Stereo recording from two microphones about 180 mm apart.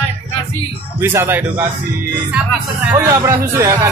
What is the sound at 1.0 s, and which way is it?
Speech, 15° right (ahead or behind).